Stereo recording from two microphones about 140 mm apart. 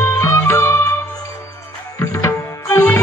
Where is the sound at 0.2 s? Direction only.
20° left (ahead or behind).